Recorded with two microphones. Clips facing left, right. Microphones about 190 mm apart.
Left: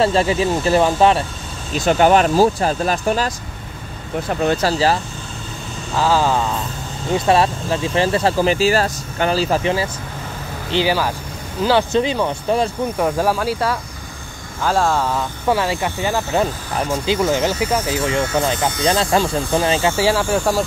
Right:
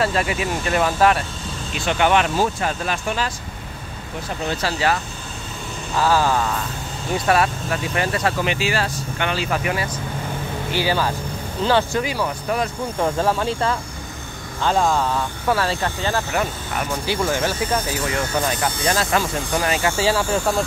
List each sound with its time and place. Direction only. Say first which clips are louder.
0.0 s speech: left 5 dB; 30° left (ahead or behind)
1.7 s speech: left 5 dB; 40° left (ahead or behind)
4.5 s speech: left 4 dB; 45° left (ahead or behind)
5.9 s speech: left 2 dB; 15° left (ahead or behind)
13.0 s speech: left 1 dB; 5° left (ahead or behind)
16.3 s speech: left 4 dB; 25° left (ahead or behind)
20.0 s speech: left 3 dB; 10° left (ahead or behind)